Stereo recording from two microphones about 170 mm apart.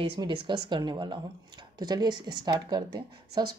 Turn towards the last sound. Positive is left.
turn(degrees=-25)  # may be behind; listen again after turning